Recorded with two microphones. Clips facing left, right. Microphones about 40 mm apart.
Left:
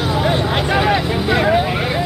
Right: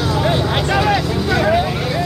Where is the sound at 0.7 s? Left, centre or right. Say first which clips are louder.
Even; centre.